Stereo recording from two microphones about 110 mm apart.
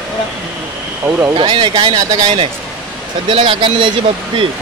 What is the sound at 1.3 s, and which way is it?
Speech, 45° right (ahead or behind).